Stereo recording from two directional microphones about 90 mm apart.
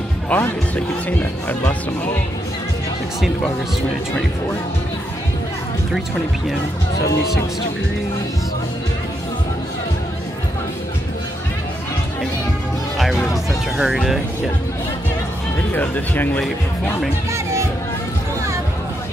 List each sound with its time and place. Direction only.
0.3 s speech: 20° left (ahead or behind)
13.7 s speech: 5° right (ahead or behind)
15.7 s speech: 20° left (ahead or behind)